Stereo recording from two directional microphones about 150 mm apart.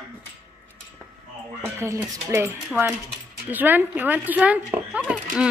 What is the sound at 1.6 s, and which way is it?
A woman's voice, 20° right (ahead or behind).